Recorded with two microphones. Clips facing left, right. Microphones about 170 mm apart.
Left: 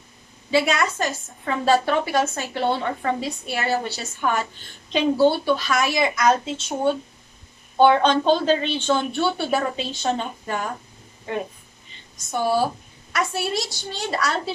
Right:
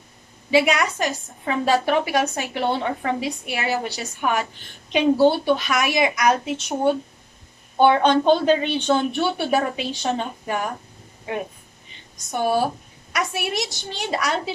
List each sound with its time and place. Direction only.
0.5 s a woman's voice: 15° right (ahead or behind)
12.3 s a woman's voice: 15° right (ahead or behind)